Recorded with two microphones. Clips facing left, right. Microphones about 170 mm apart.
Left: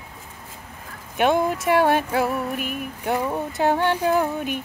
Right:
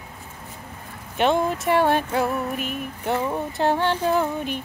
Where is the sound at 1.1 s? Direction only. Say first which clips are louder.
Left 1 dB; 10° left (ahead or behind).